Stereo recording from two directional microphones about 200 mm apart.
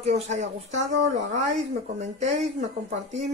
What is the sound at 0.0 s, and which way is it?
A woman's voice, 35° right (ahead or behind).